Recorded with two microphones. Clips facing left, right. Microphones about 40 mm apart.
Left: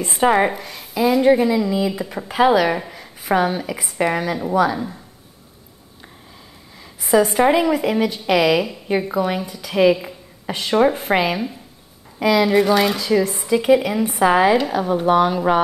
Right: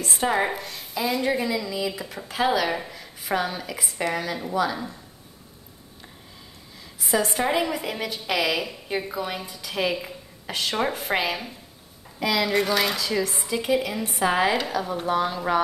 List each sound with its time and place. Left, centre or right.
0.0 s a woman's voice: left
0.5 s speech: centre
1.5 s a woman's voice: left
1.9 s a woman's voice: centre
4.0 s a woman's voice: left
7.0 s a woman's voice: centre
12.9 s a woman's voice: centre
13.3 s a woman's voice: centre